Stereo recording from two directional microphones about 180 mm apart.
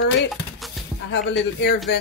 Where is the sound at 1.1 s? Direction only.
80° left.